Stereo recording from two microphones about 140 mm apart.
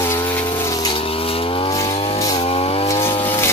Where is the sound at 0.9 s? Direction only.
40° left (ahead or behind).